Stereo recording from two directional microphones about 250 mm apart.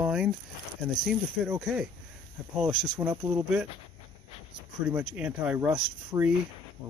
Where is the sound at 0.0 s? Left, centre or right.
Centre.